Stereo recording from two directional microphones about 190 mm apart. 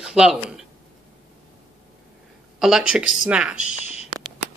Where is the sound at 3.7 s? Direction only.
35° left (ahead or behind).